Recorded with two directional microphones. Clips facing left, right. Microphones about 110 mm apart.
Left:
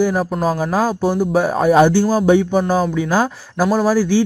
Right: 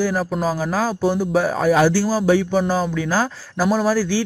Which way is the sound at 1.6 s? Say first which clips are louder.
Left 5 dB; 25° left (ahead or behind).